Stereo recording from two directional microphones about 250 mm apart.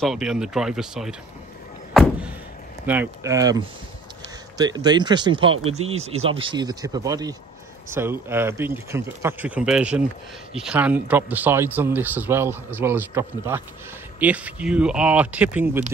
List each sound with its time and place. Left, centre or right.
0.0 s speech: centre
2.0 s a sound: centre
2.9 s speech: centre